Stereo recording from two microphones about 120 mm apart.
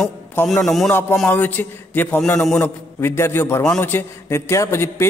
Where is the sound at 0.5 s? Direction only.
5° left (ahead or behind).